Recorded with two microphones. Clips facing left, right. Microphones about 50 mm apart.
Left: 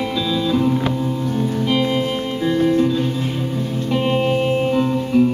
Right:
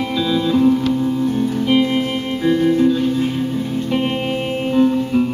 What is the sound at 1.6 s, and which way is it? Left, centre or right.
Music, centre.